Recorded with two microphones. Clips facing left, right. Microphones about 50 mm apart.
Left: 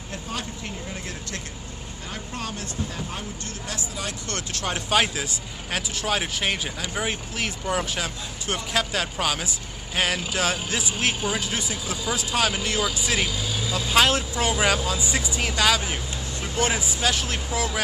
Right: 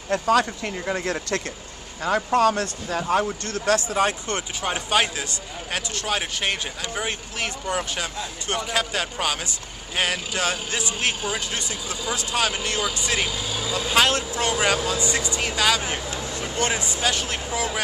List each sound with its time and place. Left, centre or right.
0.1 s speech: right
3.4 s speech: right
4.3 s speech: centre